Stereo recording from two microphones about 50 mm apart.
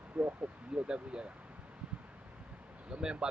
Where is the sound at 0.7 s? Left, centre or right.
Centre.